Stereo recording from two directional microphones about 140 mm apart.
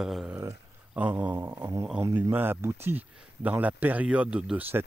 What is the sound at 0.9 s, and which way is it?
Speech, 10° right (ahead or behind).